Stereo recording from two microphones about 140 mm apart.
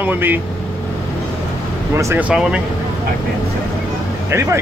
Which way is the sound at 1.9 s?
15° right (ahead or behind).